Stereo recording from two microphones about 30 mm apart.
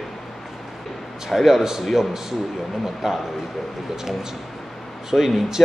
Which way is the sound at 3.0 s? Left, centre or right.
Centre.